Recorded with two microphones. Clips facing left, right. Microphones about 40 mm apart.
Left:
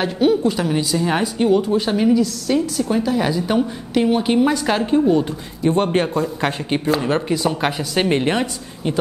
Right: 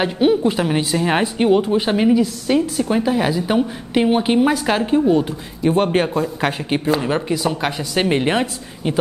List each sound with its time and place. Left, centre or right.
0.0 s a woman's voice: centre